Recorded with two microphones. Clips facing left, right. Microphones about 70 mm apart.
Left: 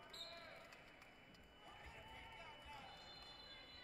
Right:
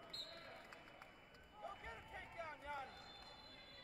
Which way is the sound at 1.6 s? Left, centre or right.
Right.